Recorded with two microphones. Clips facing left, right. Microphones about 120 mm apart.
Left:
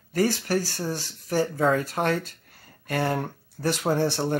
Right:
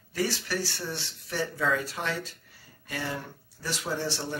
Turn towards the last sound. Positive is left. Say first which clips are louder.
# left 8 dB
turn(degrees=55)  # may be behind; listen again after turning